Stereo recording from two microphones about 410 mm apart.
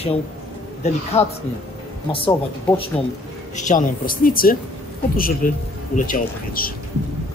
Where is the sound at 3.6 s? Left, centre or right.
Centre.